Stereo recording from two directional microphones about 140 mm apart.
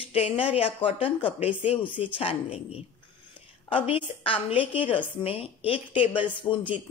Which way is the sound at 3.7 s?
40° left (ahead or behind).